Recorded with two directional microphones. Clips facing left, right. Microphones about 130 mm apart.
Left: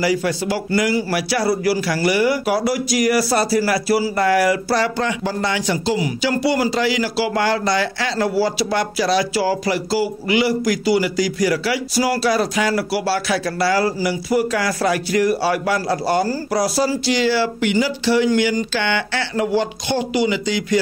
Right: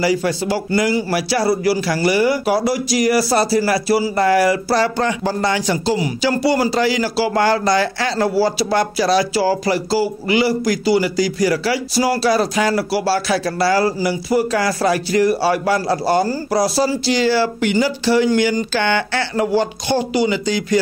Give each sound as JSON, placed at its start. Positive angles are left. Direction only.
{"t": 0.0, "sound": "a man's voice", "side_deg": -30}